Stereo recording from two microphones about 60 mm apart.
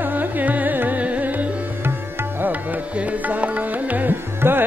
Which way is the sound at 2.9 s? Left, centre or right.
Right.